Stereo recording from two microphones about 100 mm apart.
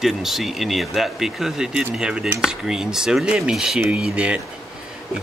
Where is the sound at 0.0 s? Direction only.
5° right (ahead or behind).